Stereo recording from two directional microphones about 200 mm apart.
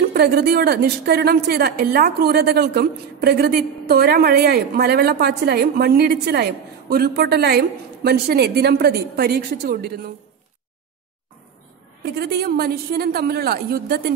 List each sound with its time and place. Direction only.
0.1 s a woman's voice: 50° right (ahead or behind)
12.0 s a woman's voice: 50° right (ahead or behind)